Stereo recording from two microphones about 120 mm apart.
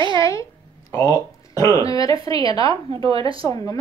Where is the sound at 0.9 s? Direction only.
30° left (ahead or behind).